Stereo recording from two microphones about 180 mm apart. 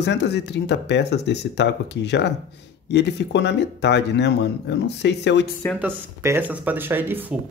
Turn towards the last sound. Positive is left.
turn(degrees=-10)  # may be behind; listen again after turning